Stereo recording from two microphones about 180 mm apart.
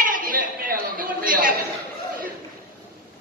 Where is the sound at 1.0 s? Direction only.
50° right (ahead or behind).